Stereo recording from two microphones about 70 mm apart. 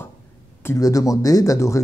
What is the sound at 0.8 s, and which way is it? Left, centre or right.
Speech, left.